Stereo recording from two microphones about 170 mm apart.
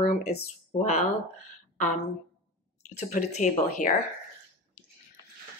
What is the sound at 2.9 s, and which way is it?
Speech, 45° left (ahead or behind).